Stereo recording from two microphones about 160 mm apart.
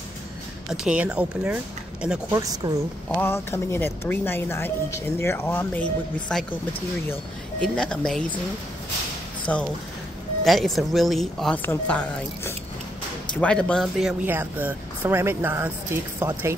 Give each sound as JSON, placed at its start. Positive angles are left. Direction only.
{"t": 0.7, "sound": "speech", "side_deg": -5}
{"t": 2.3, "sound": "a woman's voice", "side_deg": -20}
{"t": 3.1, "sound": "speech", "side_deg": 15}
{"t": 7.6, "sound": "speech", "side_deg": 5}
{"t": 9.5, "sound": "speech", "side_deg": 5}
{"t": 14.2, "sound": "speech", "side_deg": -10}